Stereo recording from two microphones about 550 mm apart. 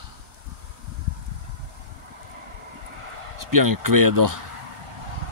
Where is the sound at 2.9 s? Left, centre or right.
Right.